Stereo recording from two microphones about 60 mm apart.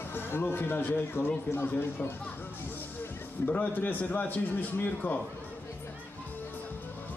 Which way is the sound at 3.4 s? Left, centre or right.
Left.